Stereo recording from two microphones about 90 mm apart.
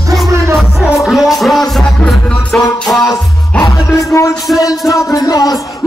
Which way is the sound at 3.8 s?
40° left (ahead or behind).